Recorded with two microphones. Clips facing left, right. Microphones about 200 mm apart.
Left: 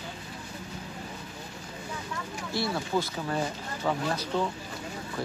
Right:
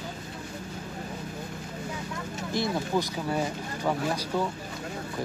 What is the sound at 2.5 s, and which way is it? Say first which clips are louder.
Speech: right 2 dB; 15° right (ahead or behind).